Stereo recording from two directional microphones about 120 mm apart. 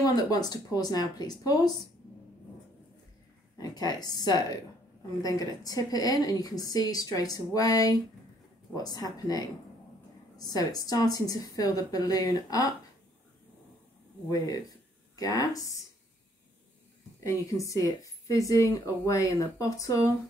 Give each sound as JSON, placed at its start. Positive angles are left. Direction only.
{"t": 0.0, "sound": "a woman's voice", "side_deg": 35}
{"t": 3.5, "sound": "a woman's voice", "side_deg": 35}
{"t": 15.1, "sound": "a woman's voice", "side_deg": 35}
{"t": 17.2, "sound": "a woman's voice", "side_deg": 25}